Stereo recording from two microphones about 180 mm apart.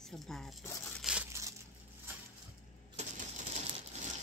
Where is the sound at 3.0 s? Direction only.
40° right (ahead or behind).